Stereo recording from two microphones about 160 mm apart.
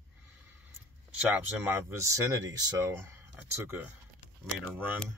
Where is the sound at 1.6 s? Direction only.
15° right (ahead or behind).